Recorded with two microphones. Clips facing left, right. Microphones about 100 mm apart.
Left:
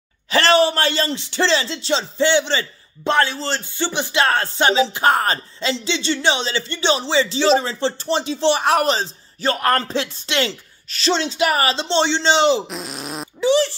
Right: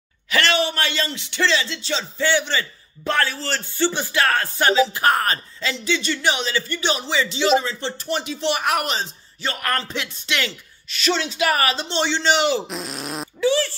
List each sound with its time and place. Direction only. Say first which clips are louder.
0.3 s speech: left 6 dB; 35° left (ahead or behind)
12.6 s cat: even; centre (ahead or behind)
13.4 s speech: left 3 dB; 25° left (ahead or behind)